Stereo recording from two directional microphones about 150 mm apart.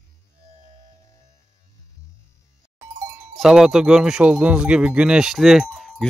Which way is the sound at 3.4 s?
5° right (ahead or behind).